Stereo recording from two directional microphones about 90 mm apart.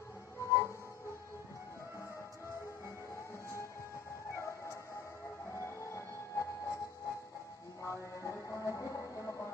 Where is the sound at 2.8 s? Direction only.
30° left (ahead or behind).